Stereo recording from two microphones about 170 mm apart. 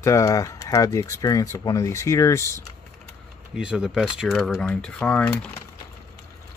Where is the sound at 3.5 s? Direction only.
5° right (ahead or behind).